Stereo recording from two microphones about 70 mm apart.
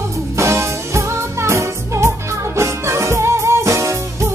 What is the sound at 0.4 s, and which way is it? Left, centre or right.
Music, right.